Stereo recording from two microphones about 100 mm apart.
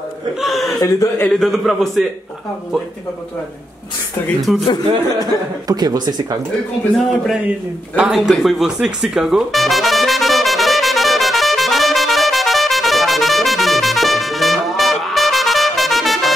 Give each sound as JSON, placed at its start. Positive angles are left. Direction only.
{"t": 0.4, "sound": "a man's voice", "side_deg": 0}
{"t": 0.7, "sound": "a man's voice", "side_deg": 35}
{"t": 1.3, "sound": "a man's voice", "side_deg": 5}
{"t": 4.5, "sound": "a man's voice", "side_deg": -5}
{"t": 5.7, "sound": "speech", "side_deg": -45}
{"t": 7.0, "sound": "a man's voice", "side_deg": 0}
{"t": 7.9, "sound": "music", "side_deg": -5}